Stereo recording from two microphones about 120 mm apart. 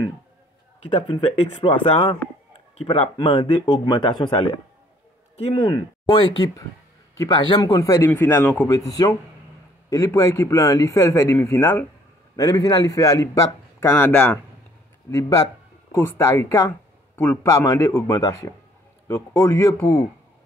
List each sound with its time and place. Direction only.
0.8 s speech: 45° left (ahead or behind)
3.2 s speech: 45° left (ahead or behind)
5.4 s speech: 55° left (ahead or behind)
5.7 s speech: 40° left (ahead or behind)
8.1 s speech: 15° left (ahead or behind)
8.6 s a man's voice: 30° left (ahead or behind); by 14.4 s 10° left (ahead or behind)
15.0 s a man's voice: 25° left (ahead or behind)
17.5 s a man's voice: 30° left (ahead or behind)